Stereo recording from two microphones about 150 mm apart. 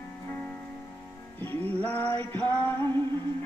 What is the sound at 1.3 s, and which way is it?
Music, 10° left (ahead or behind).